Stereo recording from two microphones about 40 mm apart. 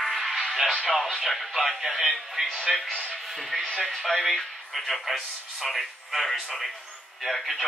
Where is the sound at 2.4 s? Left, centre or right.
Centre.